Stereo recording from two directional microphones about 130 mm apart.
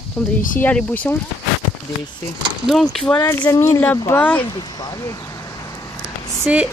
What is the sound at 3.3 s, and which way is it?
Speech, 15° left (ahead or behind).